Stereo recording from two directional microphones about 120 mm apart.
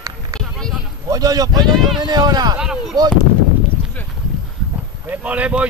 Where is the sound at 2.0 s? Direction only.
35° right (ahead or behind).